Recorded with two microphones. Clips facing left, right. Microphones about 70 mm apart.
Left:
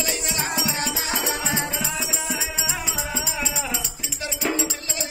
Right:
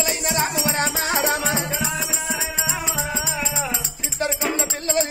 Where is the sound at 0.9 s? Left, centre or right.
Right.